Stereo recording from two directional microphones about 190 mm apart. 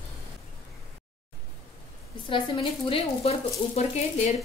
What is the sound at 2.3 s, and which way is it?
Speech, 25° left (ahead or behind).